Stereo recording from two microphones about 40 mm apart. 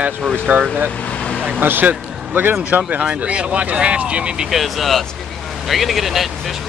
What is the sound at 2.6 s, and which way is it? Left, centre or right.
Speech, right.